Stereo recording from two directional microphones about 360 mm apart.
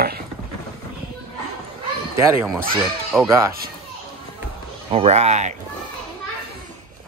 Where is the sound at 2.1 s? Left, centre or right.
Centre.